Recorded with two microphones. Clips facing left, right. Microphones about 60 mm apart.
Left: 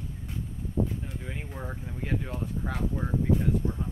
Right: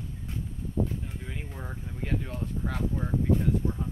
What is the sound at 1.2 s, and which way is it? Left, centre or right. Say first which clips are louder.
Speech: left 2 dB; centre.